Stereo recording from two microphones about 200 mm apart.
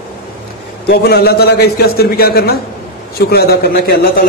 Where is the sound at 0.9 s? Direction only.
50° left (ahead or behind).